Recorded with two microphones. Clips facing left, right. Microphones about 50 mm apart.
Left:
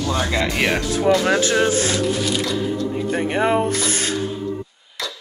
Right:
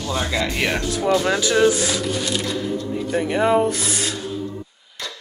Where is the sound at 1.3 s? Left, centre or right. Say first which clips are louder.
Even; left.